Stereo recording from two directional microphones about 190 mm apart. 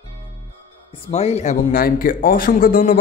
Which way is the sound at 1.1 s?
35° left (ahead or behind).